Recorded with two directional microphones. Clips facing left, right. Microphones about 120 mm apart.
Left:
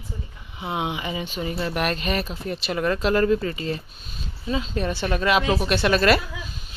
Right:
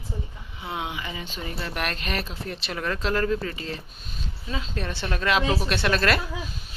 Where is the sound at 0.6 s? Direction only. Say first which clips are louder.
Left 5 dB; 20° left (ahead or behind).